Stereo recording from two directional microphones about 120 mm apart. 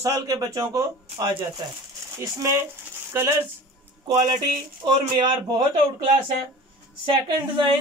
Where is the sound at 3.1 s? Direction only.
20° right (ahead or behind).